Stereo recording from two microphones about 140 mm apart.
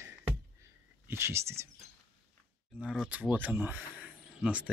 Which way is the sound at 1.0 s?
20° right (ahead or behind).